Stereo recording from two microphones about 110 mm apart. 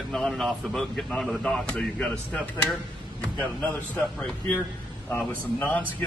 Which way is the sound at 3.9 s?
10° left (ahead or behind).